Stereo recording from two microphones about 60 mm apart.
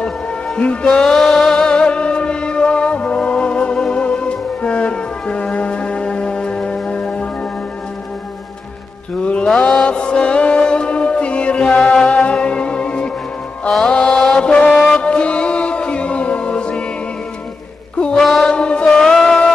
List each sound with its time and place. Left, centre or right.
0.6 s music: centre
9.2 s mantra: centre
13.7 s music: centre
18.1 s mantra: centre
18.5 s music: centre